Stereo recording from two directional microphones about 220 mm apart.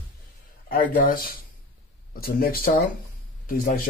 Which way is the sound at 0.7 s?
40° left (ahead or behind).